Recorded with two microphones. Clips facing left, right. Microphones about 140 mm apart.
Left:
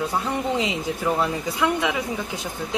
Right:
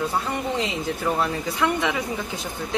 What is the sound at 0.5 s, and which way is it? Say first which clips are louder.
A man's voice: left 1 dB; 10° left (ahead or behind).